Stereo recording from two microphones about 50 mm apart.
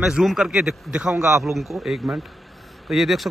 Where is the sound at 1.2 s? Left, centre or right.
Right.